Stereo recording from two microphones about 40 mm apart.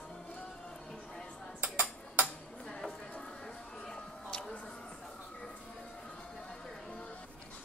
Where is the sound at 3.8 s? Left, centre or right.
Centre.